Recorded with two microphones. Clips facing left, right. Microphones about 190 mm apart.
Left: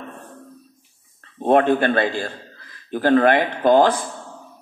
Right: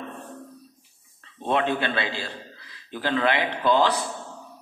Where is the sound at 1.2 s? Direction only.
50° left (ahead or behind).